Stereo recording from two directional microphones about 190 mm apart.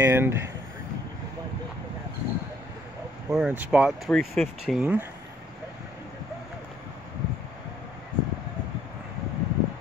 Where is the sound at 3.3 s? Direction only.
5° right (ahead or behind).